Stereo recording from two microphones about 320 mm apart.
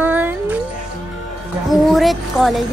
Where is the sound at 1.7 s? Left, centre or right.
Centre.